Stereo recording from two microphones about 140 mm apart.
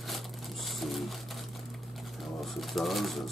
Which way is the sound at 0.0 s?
Centre (ahead or behind).